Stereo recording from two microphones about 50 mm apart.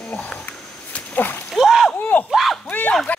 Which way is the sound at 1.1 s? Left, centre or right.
Left.